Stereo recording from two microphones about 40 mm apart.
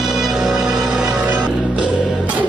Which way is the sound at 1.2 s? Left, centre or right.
Right.